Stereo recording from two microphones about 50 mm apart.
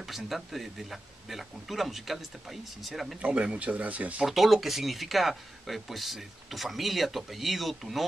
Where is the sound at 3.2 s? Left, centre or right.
Right.